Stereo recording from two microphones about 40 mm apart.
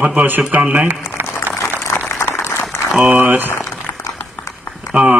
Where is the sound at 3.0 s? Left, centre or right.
Right.